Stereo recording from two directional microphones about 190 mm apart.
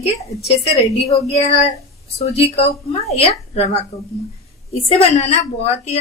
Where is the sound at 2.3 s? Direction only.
30° left (ahead or behind).